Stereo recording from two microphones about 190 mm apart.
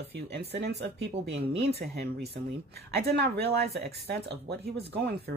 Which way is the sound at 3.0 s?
60° right (ahead or behind).